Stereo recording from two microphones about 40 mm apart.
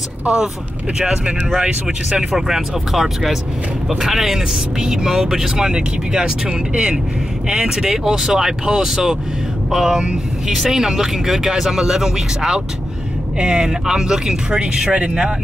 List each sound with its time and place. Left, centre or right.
0.9 s speech: centre